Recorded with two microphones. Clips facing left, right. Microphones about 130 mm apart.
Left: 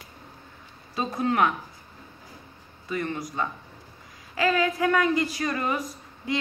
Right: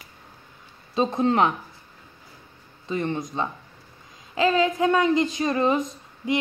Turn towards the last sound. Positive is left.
turn(degrees=-20)  # may be behind; listen again after turning